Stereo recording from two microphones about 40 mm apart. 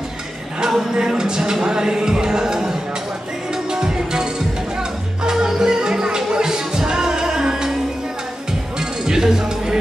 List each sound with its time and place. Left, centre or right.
0.6 s music: centre
8.7 s music: centre